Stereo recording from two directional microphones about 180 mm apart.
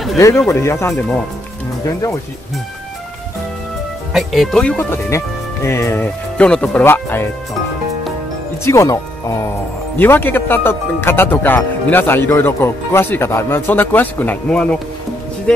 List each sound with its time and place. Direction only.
0.5 s speech: 15° left (ahead or behind)
0.9 s speech: 5° left (ahead or behind)
4.1 s speech: centre (ahead or behind)
8.6 s speech: 15° left (ahead or behind)